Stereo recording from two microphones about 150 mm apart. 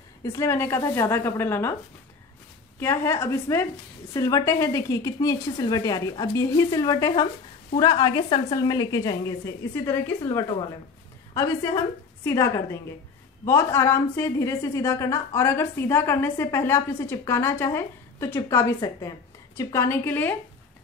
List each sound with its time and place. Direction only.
0.2 s a woman's voice: 20° left (ahead or behind)
2.8 s a woman's voice: 15° left (ahead or behind)